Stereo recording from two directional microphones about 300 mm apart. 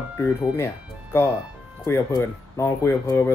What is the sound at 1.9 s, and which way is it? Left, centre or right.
Speech, centre.